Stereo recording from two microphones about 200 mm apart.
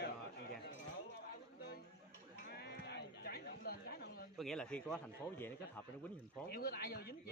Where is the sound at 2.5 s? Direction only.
55° left (ahead or behind).